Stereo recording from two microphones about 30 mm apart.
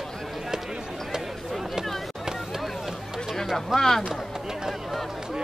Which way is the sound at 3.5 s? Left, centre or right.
Centre.